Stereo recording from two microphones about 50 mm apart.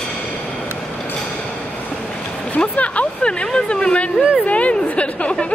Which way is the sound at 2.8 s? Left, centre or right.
Left.